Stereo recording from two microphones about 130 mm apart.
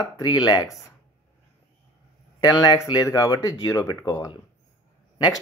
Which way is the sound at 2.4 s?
30° left (ahead or behind).